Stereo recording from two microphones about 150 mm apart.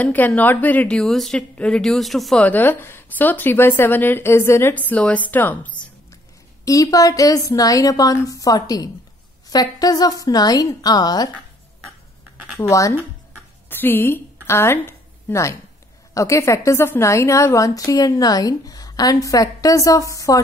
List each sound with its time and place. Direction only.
0.0 s a woman's voice: 10° left (ahead or behind)
6.6 s a woman's voice: 25° left (ahead or behind)
12.5 s a woman's voice: 20° left (ahead or behind)